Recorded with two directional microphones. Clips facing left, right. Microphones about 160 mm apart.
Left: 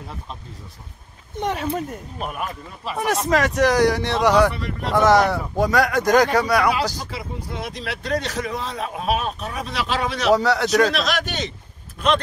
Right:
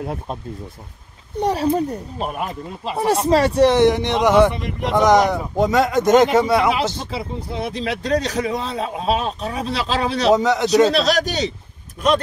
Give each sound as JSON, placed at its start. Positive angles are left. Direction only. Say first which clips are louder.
{"t": 0.0, "sound": "speech", "louder": "right 9 dB", "side_deg": -55}
{"t": 1.3, "sound": "speech", "louder": "right 6 dB", "side_deg": -35}
{"t": 10.3, "sound": "speech", "louder": "even", "side_deg": -20}
{"t": 10.7, "sound": "a man's voice", "louder": "right 4 dB", "side_deg": -30}